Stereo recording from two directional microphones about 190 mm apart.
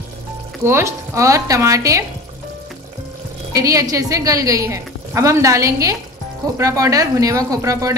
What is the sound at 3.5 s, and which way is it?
A woman's voice, 15° right (ahead or behind).